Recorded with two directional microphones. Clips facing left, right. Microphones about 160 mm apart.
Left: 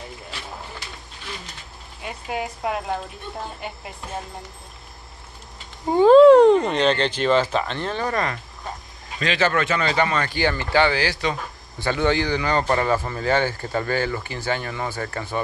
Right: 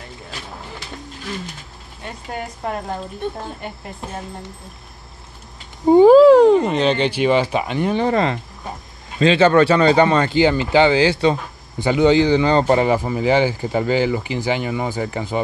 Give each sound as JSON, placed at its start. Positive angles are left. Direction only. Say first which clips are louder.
{"t": 2.0, "sound": "speech", "louder": "left 1 dB", "side_deg": 5}
{"t": 5.9, "sound": "speech", "louder": "right 6 dB", "side_deg": -15}
{"t": 6.1, "sound": "speech", "louder": "right 1 dB", "side_deg": 0}
{"t": 11.8, "sound": "speech", "louder": "right 7 dB", "side_deg": -15}
{"t": 12.7, "sound": "speech", "louder": "right 5 dB", "side_deg": -15}